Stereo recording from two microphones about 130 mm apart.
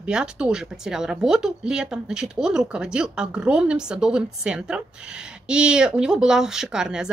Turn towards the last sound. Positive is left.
turn(degrees=-5)  # may be behind; listen again after turning